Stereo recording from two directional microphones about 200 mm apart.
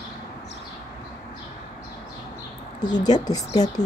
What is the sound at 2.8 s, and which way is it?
Speech, 20° left (ahead or behind).